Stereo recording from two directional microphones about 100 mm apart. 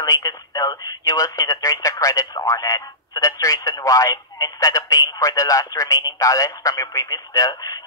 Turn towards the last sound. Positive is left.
turn(degrees=35)  # may be behind; listen again after turning